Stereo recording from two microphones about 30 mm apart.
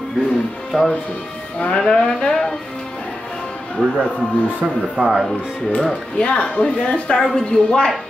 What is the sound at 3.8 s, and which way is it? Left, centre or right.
Speech, centre.